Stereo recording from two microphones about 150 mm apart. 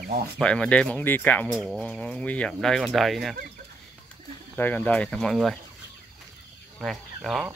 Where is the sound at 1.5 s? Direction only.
5° right (ahead or behind).